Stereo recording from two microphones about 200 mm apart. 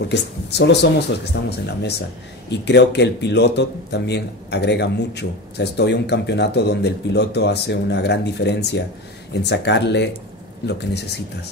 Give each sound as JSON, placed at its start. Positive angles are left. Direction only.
{"t": 0.1, "sound": "a man's voice", "side_deg": 55}